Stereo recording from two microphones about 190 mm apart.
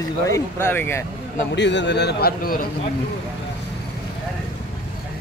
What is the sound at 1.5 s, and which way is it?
A man's voice, 70° left (ahead or behind).